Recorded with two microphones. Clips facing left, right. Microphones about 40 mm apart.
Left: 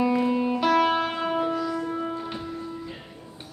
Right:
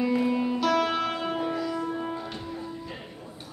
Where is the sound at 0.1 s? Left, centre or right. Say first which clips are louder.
Left 2 dB; centre.